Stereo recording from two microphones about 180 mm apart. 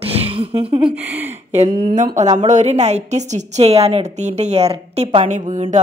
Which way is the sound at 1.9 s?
45° right (ahead or behind).